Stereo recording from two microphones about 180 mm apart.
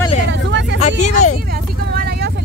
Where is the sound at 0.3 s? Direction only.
80° right.